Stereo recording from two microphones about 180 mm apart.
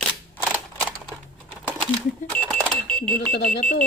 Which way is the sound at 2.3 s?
10° left (ahead or behind).